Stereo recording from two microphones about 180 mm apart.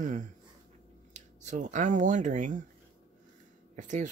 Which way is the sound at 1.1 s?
40° right (ahead or behind).